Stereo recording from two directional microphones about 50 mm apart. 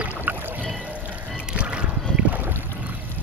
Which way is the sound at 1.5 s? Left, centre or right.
Right.